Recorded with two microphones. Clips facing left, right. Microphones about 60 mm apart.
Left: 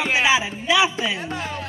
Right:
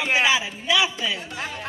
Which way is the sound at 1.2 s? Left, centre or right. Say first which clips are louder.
Left 4 dB; left.